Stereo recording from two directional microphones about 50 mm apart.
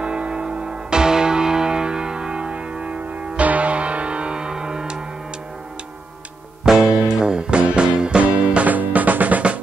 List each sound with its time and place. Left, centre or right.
0.0 s music: right
6.9 s music: centre